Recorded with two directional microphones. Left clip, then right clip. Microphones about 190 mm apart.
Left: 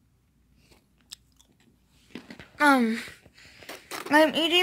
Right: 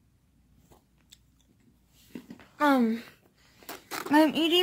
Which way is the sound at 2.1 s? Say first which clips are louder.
Left 4 dB; centre (ahead or behind).